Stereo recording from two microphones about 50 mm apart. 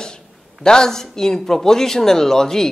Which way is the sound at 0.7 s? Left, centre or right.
Centre.